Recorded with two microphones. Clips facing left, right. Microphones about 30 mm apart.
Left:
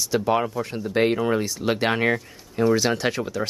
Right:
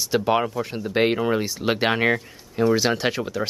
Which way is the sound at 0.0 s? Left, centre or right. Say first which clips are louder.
Right 1 dB; centre.